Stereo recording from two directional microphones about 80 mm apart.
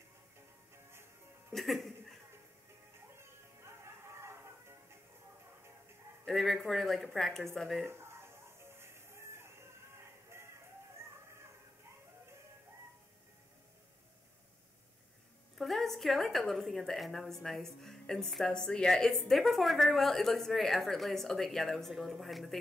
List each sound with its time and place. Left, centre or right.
1.5 s chuckle: centre
3.2 s music: right
6.2 s a woman's voice: centre
7.8 s music: right
10.3 s chicken: right
15.5 s a woman's voice: centre